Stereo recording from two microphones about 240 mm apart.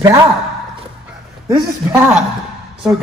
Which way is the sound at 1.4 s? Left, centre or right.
Centre.